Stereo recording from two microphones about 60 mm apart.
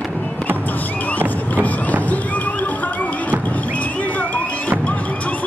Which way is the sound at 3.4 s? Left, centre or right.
Left.